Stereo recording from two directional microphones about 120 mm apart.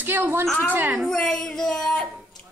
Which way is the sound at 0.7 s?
15° right (ahead or behind).